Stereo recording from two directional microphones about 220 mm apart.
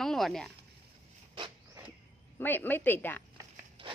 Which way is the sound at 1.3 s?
20° right (ahead or behind).